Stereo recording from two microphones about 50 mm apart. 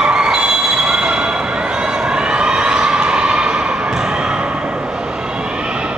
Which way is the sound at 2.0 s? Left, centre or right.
Centre.